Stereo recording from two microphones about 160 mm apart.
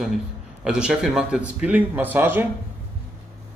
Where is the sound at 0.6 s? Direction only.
5° right (ahead or behind).